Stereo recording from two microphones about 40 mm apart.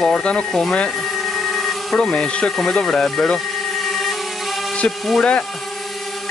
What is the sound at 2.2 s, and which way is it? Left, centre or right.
Speech, left.